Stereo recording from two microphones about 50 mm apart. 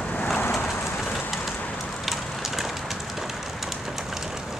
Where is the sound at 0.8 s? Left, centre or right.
Centre.